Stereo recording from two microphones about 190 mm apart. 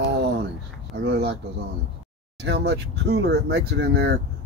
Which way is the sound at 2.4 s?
65° right (ahead or behind).